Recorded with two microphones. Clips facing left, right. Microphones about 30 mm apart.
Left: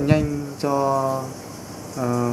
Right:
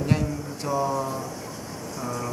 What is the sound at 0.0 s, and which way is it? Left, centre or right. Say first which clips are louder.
Speech: left 6 dB; left.